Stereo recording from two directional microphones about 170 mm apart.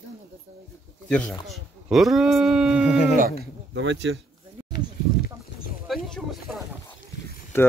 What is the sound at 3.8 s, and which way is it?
Speech, 90° right.